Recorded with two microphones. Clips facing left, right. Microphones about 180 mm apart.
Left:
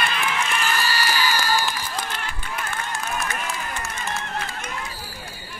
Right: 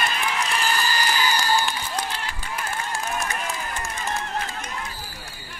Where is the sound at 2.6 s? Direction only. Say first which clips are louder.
Right 1 dB; 35° right (ahead or behind).